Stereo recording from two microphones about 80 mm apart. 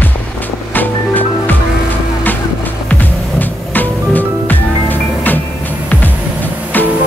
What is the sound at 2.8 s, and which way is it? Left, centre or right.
Music, left.